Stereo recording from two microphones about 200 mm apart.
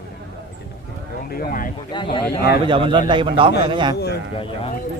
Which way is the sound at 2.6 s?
25° right (ahead or behind).